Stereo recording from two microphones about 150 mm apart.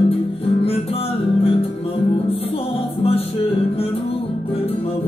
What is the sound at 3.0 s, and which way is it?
Music, 40° left (ahead or behind).